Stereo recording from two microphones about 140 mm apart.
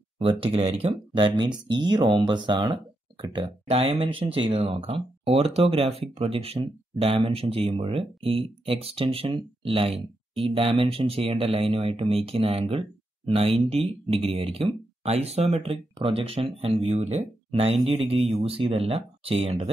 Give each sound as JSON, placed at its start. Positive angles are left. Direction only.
{"t": 0.2, "sound": "speech", "side_deg": -40}